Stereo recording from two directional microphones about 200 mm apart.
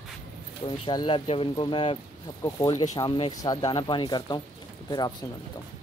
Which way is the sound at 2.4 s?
15° left (ahead or behind).